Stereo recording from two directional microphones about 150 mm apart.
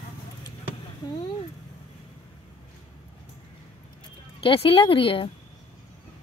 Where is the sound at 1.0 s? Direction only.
30° left (ahead or behind).